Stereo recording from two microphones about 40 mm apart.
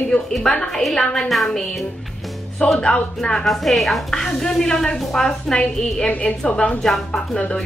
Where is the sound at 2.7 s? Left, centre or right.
Left.